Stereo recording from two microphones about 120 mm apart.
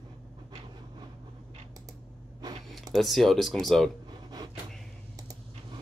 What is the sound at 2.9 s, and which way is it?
Speech, centre (ahead or behind).